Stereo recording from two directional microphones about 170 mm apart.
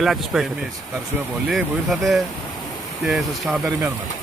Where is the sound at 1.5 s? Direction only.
Centre (ahead or behind).